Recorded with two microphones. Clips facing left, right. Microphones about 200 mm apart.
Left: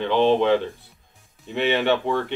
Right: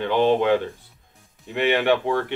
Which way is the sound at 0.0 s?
10° right (ahead or behind).